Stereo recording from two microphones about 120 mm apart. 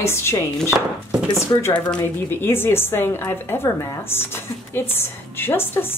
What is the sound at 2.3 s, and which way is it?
A woman's voice, 20° left (ahead or behind).